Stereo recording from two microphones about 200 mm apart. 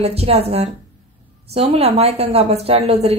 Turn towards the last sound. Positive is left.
turn(degrees=-30)  # may be behind; listen again after turning